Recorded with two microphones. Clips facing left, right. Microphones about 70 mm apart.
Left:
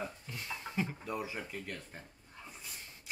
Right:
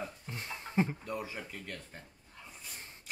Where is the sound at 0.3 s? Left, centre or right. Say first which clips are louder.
Right 1 dB; right.